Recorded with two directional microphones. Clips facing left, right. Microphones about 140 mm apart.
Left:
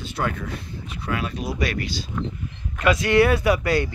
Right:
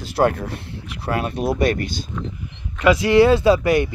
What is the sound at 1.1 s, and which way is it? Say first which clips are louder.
Speech: right 6 dB; 55° right (ahead or behind).